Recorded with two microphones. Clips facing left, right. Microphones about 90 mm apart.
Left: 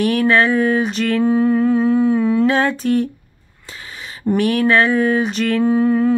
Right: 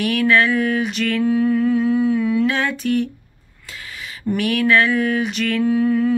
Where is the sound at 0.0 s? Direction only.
35° left (ahead or behind).